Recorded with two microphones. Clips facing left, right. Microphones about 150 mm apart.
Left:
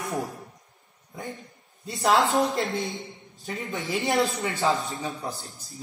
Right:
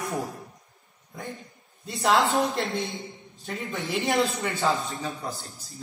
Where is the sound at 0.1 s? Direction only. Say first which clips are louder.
Left 1 dB; centre (ahead or behind).